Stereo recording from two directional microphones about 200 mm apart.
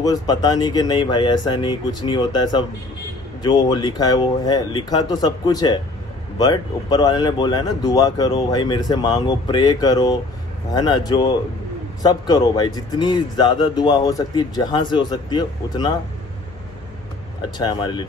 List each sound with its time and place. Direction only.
0.0 s speech: 20° left (ahead or behind)
17.4 s speech: 20° left (ahead or behind)